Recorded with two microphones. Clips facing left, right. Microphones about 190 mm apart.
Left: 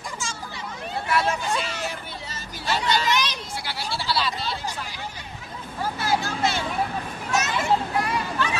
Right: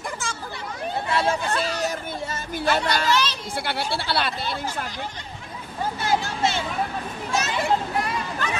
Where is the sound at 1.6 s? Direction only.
40° right (ahead or behind).